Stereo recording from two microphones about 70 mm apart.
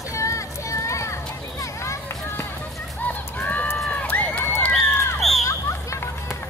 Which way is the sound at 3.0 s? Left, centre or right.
Left.